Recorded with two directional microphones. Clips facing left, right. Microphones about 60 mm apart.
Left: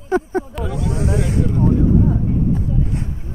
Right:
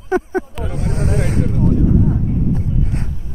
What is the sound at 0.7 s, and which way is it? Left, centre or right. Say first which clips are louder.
Speech: even; right.